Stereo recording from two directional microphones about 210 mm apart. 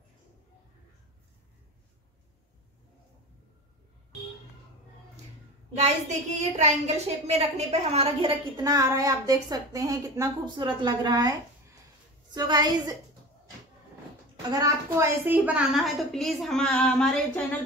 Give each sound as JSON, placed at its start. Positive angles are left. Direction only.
{"t": 5.8, "sound": "a woman's voice", "side_deg": -35}
{"t": 14.5, "sound": "a woman's voice", "side_deg": -15}